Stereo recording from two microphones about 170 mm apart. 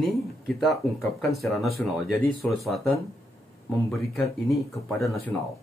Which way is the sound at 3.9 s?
Centre (ahead or behind).